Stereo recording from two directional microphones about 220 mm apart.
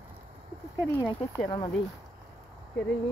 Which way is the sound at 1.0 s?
20° left (ahead or behind).